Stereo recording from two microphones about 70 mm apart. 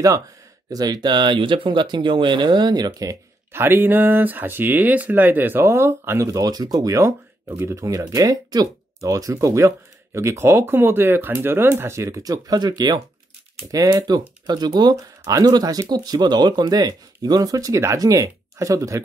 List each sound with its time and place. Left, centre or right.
0.7 s speech: right
3.5 s speech: right
6.3 s speech: right
12.3 s speech: right
14.1 s speech: right
15.0 s speech: right
15.5 s speech: right